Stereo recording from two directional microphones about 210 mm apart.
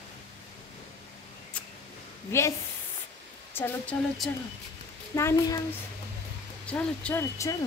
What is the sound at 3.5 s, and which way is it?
Speech, 10° left (ahead or behind).